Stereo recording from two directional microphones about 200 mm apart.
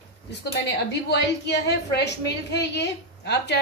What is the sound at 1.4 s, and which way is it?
A woman's voice, 60° left (ahead or behind).